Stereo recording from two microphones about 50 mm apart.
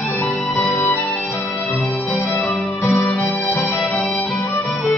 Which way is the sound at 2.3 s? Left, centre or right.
Left.